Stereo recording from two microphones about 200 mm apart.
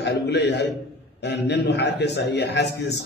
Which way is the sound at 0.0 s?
60° left (ahead or behind).